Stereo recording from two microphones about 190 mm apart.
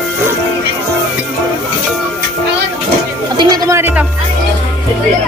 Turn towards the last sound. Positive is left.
turn(degrees=-10)  # may be behind; listen again after turning